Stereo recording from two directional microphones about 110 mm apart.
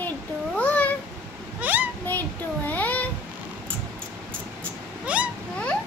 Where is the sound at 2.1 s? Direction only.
15° left (ahead or behind).